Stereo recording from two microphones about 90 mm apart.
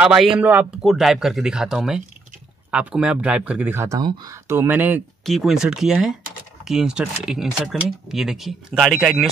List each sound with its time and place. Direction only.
0.0 s speech: 5° right (ahead or behind)
0.4 s speech: 20° right (ahead or behind)
0.7 s speech: 5° right (ahead or behind)
4.0 s speech: 55° right (ahead or behind)
4.3 s speech: 35° right (ahead or behind)
4.6 s speech: 20° right (ahead or behind)
5.2 s speech: centre (ahead or behind)